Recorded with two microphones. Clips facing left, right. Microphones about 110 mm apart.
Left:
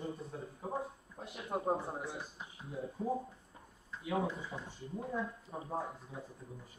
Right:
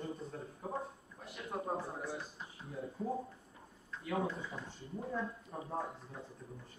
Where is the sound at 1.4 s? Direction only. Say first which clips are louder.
Left 4 dB; 25° left (ahead or behind).